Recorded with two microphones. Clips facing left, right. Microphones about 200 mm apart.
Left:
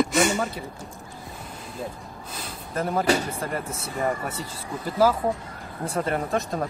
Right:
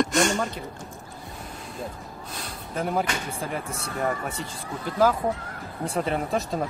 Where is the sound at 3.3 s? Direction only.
Centre (ahead or behind).